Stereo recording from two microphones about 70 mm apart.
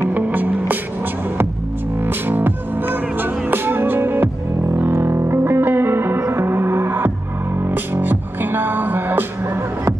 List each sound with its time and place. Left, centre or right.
0.0 s music: right
2.0 s music: right